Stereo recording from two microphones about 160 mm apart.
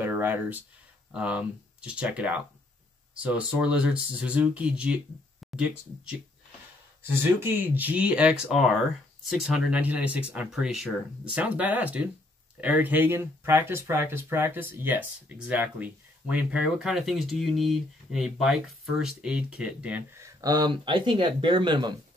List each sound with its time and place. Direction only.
0.0 s a sound: 15° right (ahead or behind)
1.1 s speech: 5° right (ahead or behind)
7.3 s speech: 15° right (ahead or behind)
20.2 s speech: 25° right (ahead or behind)